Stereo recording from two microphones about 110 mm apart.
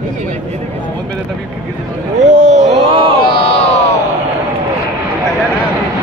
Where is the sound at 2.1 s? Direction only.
90° right.